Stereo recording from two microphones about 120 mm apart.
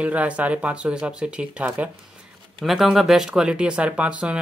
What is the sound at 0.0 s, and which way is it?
Speech, 10° right (ahead or behind).